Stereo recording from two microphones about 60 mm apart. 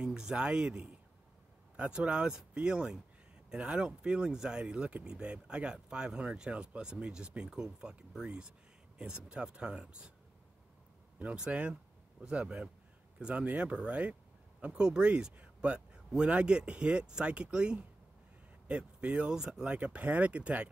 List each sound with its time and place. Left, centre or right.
0.0 s speech: centre
11.3 s speech: centre